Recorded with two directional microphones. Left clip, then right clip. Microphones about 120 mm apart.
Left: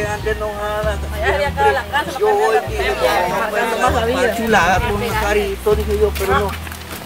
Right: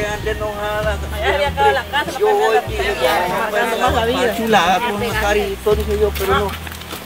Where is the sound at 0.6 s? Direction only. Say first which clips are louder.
Even; 5° right (ahead or behind).